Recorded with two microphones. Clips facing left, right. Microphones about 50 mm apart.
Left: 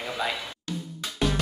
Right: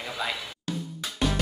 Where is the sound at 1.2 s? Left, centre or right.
Centre.